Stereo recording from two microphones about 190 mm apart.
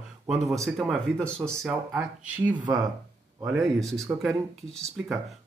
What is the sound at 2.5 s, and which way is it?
Speech, 20° right (ahead or behind).